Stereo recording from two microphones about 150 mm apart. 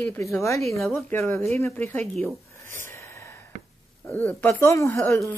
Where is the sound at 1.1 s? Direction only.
20° left (ahead or behind).